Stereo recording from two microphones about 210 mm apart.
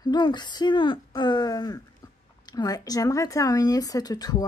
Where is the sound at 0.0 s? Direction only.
20° left (ahead or behind).